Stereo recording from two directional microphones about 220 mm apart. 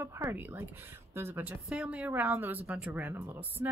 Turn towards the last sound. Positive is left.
turn(degrees=-10)  # may be behind; listen again after turning